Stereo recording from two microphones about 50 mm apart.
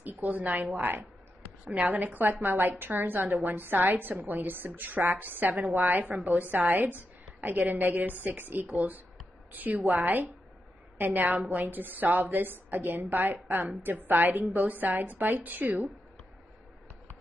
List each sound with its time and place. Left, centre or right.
0.0 s a woman's voice: right